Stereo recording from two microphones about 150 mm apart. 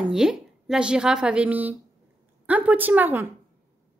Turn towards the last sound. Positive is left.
turn(degrees=-15)  # may be behind; listen again after turning